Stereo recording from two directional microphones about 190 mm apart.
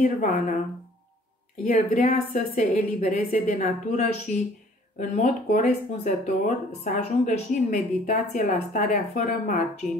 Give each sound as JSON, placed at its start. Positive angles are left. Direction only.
{"t": 0.0, "sound": "speech", "side_deg": 45}
{"t": 1.6, "sound": "speech", "side_deg": 40}